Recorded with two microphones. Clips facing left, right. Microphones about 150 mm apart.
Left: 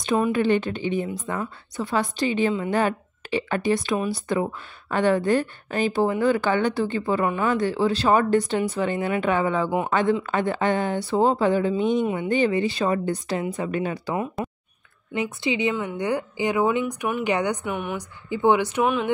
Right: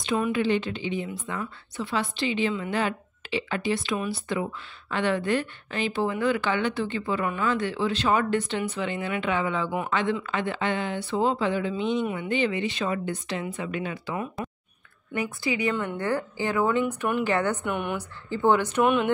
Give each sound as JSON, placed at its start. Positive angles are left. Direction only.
{"t": 0.0, "sound": "speech", "side_deg": 45}
{"t": 15.4, "sound": "speech", "side_deg": 25}
{"t": 15.7, "sound": "a woman's voice", "side_deg": 10}
{"t": 17.6, "sound": "a woman's voice", "side_deg": 5}